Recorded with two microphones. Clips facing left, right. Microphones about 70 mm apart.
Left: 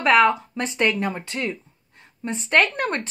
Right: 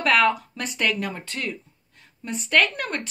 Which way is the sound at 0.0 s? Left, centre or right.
Left.